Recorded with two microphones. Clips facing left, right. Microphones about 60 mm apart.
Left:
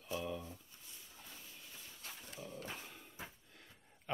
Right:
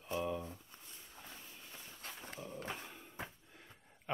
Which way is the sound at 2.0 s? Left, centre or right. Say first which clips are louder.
Right 3 dB; right.